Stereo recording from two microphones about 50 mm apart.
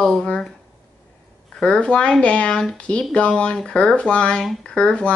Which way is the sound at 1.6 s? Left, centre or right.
Centre.